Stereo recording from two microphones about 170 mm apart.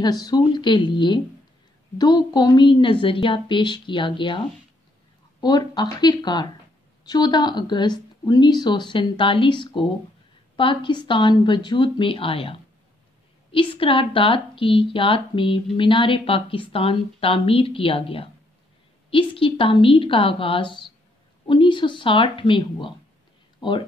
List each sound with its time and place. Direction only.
0.0 s a woman's voice: 25° left (ahead or behind)